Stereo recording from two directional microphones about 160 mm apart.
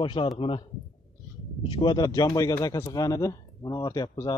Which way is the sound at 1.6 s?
30° left (ahead or behind).